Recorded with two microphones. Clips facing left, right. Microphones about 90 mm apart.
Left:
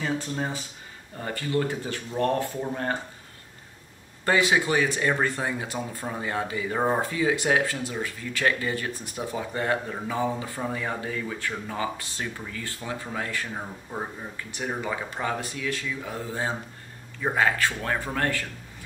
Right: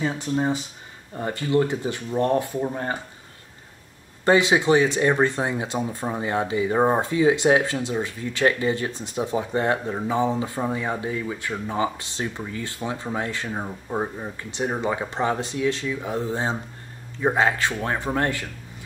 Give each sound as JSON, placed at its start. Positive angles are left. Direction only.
{"t": 0.0, "sound": "speech", "side_deg": -15}
{"t": 4.2, "sound": "speech", "side_deg": -20}